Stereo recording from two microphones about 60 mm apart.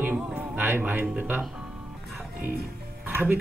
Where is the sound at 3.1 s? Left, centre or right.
Right.